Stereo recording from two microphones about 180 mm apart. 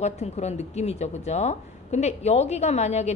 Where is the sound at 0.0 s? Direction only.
40° left (ahead or behind).